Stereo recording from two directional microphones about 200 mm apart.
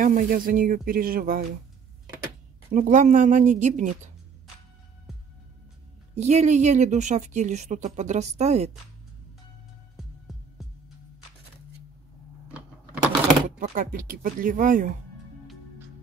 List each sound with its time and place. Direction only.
0.0 s speech: 45° right (ahead or behind)
2.7 s a woman's voice: 40° right (ahead or behind)
6.1 s a woman's voice: 35° right (ahead or behind)
9.9 s heart sounds: centre (ahead or behind)
13.6 s speech: 45° right (ahead or behind)